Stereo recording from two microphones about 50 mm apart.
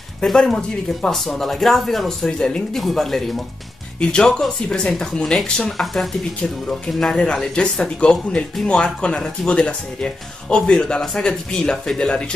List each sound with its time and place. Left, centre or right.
0.2 s speech: centre
2.2 s speech: centre
2.7 s speech: centre
8.0 s speech: left